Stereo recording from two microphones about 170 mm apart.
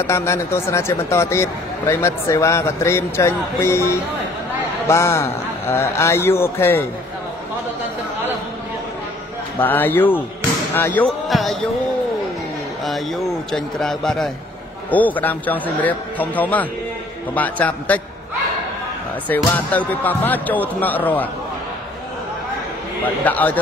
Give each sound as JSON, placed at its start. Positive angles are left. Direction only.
{"t": 0.0, "sound": "speech", "side_deg": 15}
{"t": 9.6, "sound": "speech", "side_deg": 10}
{"t": 11.2, "sound": "speech", "side_deg": 0}
{"t": 12.8, "sound": "a man's voice", "side_deg": 0}
{"t": 19.2, "sound": "speech", "side_deg": 10}
{"t": 23.0, "sound": "speech", "side_deg": 10}